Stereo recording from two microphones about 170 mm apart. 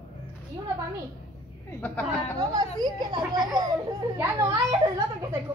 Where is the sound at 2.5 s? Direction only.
25° right (ahead or behind).